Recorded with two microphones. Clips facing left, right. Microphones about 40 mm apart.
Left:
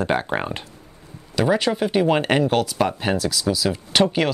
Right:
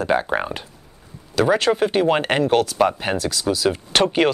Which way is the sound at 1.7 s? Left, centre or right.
Centre.